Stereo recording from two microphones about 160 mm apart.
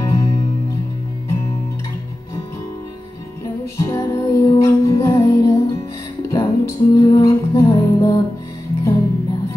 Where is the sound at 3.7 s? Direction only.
20° left (ahead or behind).